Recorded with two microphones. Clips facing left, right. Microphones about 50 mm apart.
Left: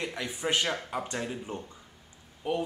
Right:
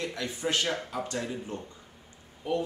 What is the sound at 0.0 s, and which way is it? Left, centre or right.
Speech, left.